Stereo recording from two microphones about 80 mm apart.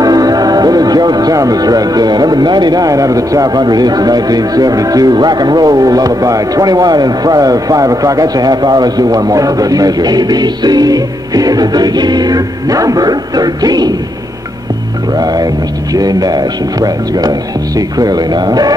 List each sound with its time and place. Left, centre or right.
0.0 s speech: right
15.1 s speech: right